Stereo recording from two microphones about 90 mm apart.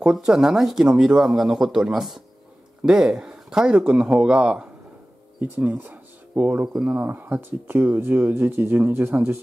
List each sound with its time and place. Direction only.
0.0 s speech: 5° right (ahead or behind); by 9.4 s 25° right (ahead or behind)